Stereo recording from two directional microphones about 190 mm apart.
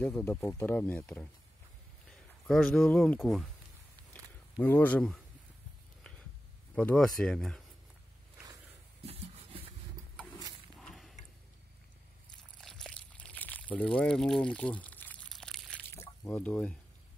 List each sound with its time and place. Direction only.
0.0 s speech: 10° left (ahead or behind)
4.6 s speech: 10° left (ahead or behind)
6.7 s speech: 5° left (ahead or behind)
9.0 s a sound: 30° right (ahead or behind)
10.8 s mechanisms: centre (ahead or behind)
12.5 s a sound: 5° left (ahead or behind)